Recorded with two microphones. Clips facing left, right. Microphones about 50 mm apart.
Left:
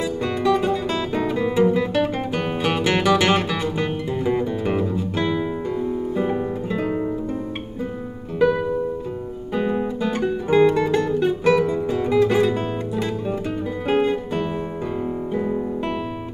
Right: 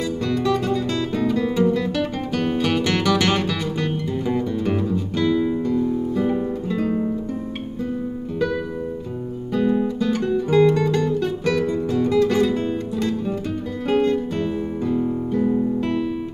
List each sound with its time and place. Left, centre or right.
0.0 s guitar: centre
5.2 s music: left
8.4 s music: centre